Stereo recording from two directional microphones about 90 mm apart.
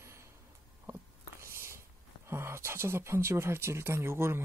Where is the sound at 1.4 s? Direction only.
30° right (ahead or behind).